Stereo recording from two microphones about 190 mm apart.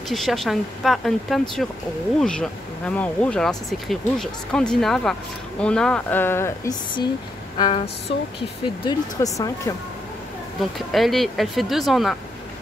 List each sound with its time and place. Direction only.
0.1 s speech: centre (ahead or behind); by 7.9 s 25° left (ahead or behind)
9.2 s speech: 20° left (ahead or behind)
10.9 s speech: centre (ahead or behind)